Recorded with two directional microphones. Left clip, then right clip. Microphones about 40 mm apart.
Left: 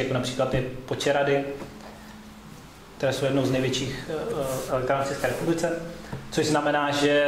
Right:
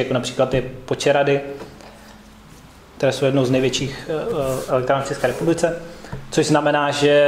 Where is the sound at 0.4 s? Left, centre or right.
Right.